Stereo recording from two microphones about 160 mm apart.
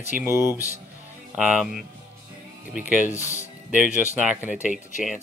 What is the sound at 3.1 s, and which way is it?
Speech, 15° left (ahead or behind).